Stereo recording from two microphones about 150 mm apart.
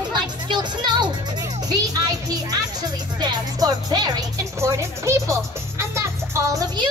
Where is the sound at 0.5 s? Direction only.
30° right (ahead or behind).